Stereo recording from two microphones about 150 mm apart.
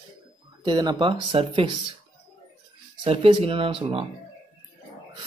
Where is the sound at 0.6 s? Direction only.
30° right (ahead or behind).